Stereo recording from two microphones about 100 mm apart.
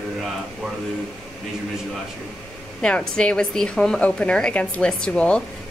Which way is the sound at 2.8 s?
10° left (ahead or behind).